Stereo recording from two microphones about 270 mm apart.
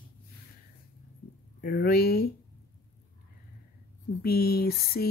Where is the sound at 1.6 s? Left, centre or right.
Left.